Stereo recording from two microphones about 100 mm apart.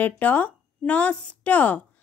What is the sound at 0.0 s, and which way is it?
Speech, 15° left (ahead or behind).